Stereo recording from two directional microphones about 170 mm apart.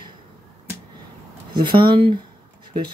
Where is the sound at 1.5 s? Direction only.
25° right (ahead or behind).